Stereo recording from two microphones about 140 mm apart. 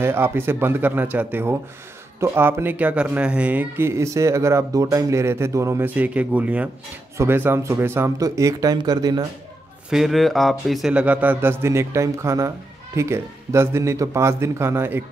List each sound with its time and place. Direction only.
0.0 s speech: 15° right (ahead or behind)
9.8 s speech: centre (ahead or behind)